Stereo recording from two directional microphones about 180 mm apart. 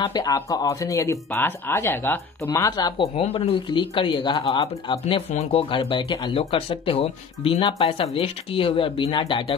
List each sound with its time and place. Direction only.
0.0 s speech: 20° left (ahead or behind)
3.2 s speech: 35° left (ahead or behind)